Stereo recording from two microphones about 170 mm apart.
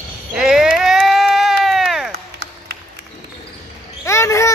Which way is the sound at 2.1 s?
75° right (ahead or behind).